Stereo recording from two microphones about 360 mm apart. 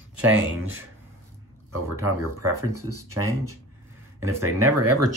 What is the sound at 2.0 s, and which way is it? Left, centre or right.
Speech, right.